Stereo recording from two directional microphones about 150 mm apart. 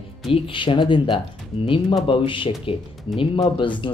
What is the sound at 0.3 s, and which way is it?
Speech, 35° left (ahead or behind).